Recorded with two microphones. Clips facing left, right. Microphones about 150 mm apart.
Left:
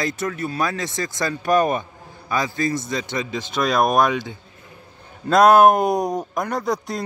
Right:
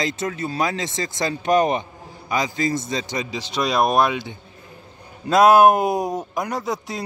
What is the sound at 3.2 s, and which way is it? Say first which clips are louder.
Speech: left 2 dB; 50° left (ahead or behind).